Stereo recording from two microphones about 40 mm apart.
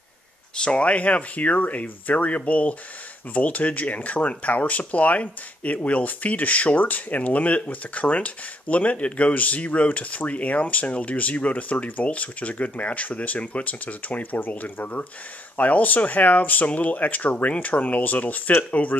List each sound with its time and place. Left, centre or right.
0.6 s speech: left